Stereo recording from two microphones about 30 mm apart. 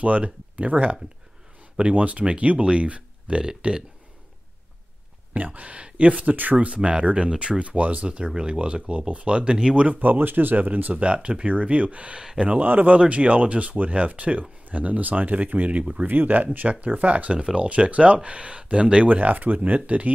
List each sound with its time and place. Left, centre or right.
0.0 s speech: right
3.4 s speech: right
5.3 s speech: right
8.7 s speech: right
9.9 s speech: right
12.5 s speech: right
12.9 s speech: right
16.1 s speech: right
16.8 s speech: right
19.0 s speech: right